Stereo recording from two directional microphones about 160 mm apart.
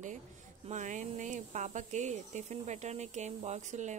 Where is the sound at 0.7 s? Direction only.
50° right (ahead or behind).